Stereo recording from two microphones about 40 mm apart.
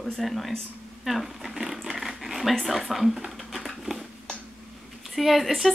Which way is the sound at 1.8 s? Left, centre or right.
Centre.